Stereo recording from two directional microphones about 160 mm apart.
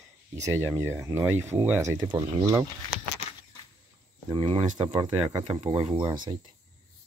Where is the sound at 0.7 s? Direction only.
15° right (ahead or behind).